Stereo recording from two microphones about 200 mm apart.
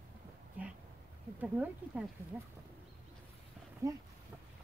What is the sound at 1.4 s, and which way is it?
Speech, 5° right (ahead or behind).